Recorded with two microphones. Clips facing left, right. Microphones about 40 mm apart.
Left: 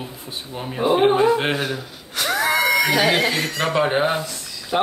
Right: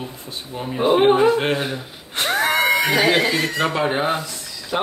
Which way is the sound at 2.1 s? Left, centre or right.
Right.